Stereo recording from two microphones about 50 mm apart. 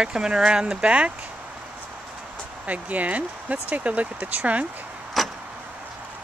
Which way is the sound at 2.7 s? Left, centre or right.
Right.